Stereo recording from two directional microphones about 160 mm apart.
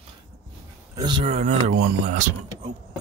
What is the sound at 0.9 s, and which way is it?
Speech, 30° right (ahead or behind).